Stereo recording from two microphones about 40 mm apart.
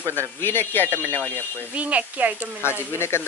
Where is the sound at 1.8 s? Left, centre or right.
Right.